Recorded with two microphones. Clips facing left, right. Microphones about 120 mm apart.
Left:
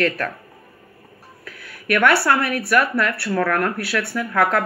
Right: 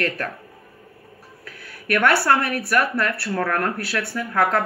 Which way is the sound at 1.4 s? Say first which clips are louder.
Left 3 dB; 35° right (ahead or behind).